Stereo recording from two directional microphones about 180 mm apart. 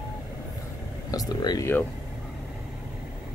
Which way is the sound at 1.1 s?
20° left (ahead or behind).